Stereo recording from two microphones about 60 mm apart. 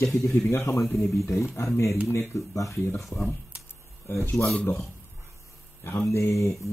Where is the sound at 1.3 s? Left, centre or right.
Left.